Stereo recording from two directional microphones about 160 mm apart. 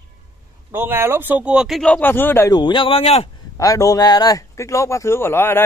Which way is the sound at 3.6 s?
20° left (ahead or behind).